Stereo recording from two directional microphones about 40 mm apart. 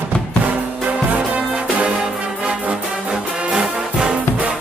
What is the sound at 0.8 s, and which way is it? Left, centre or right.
Music, right.